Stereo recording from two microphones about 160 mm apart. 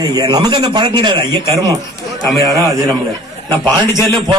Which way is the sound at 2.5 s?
20° right (ahead or behind).